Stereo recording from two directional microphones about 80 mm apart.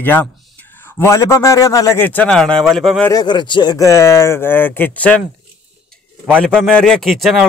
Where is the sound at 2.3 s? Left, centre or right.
Centre.